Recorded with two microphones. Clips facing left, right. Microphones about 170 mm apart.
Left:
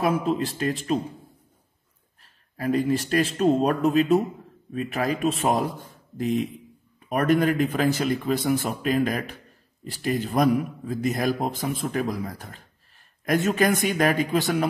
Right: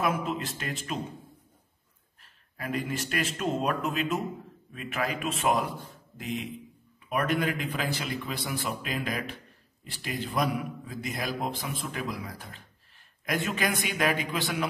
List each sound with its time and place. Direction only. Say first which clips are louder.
0.0 s speech: left 6 dB; 35° left (ahead or behind)
2.5 s a man's voice: left 9 dB; 35° left (ahead or behind)